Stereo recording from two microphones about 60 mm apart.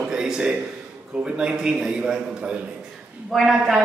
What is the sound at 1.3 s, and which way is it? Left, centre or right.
Speech, centre.